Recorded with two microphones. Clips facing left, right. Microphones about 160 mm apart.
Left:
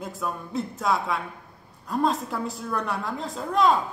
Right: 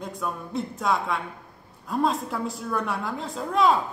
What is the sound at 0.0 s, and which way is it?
Speech, centre (ahead or behind).